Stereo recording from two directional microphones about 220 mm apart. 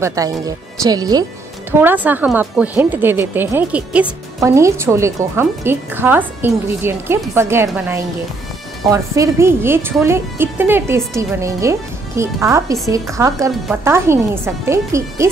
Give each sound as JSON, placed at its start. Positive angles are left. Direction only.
{"t": 0.0, "sound": "a woman's voice", "side_deg": -15}